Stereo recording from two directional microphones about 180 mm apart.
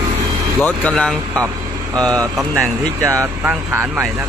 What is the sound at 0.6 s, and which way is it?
Speech, 10° left (ahead or behind).